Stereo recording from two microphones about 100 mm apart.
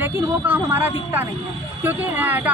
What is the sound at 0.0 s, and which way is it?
A woman's voice, 20° right (ahead or behind).